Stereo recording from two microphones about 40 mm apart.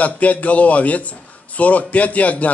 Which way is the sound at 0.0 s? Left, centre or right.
Left.